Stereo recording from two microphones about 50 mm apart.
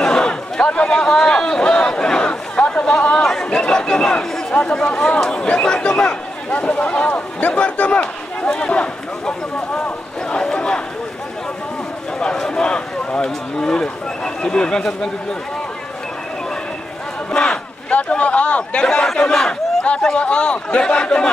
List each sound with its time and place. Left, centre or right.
0.0 s chatter: centre
3.2 s chatter: centre
4.8 s speech: left
6.5 s a man's voice: left
9.8 s a sound: centre
12.2 s speech: centre
17.3 s a man's voice: centre